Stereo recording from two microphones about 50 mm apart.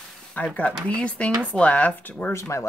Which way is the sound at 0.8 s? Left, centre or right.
Left.